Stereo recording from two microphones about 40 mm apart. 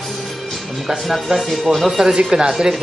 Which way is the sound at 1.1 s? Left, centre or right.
Centre.